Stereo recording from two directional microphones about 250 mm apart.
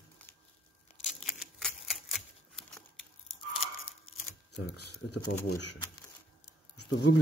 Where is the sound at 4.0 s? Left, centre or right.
Left.